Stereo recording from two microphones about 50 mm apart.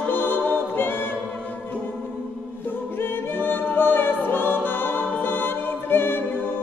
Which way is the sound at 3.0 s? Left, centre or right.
Left.